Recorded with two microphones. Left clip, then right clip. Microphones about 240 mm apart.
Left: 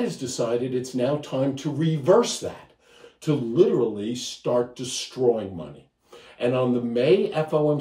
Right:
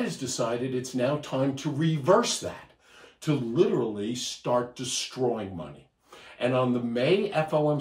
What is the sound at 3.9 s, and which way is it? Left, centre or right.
Speech, centre.